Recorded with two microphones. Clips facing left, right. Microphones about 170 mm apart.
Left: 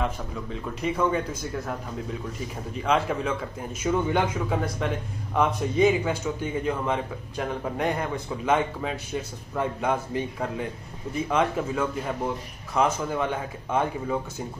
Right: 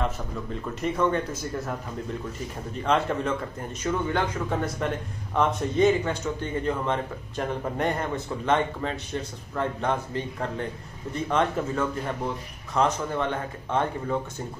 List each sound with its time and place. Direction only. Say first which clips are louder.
0.0 s a man's voice: even; centre (ahead or behind)
3.9 s a man's voice: left 3 dB; 15° left (ahead or behind)
4.5 s a man's voice: even; centre (ahead or behind)